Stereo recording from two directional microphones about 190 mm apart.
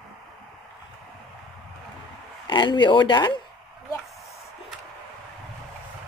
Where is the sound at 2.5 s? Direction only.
25° left (ahead or behind).